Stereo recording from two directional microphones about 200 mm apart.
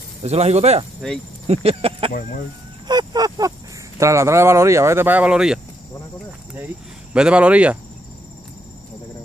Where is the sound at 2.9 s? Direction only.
20° right (ahead or behind).